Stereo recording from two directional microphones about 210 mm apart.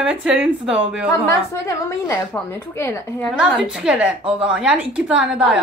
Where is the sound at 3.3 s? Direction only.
5° right (ahead or behind).